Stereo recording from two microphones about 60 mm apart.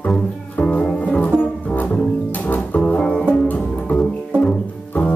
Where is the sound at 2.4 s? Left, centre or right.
Left.